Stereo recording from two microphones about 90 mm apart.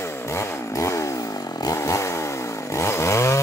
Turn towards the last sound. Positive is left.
turn(degrees=30)  # may be behind; listen again after turning